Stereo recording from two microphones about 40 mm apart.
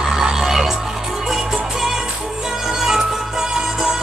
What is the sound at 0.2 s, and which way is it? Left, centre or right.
Music, centre.